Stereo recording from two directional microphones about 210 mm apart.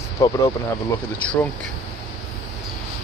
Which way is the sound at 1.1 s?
5° left (ahead or behind).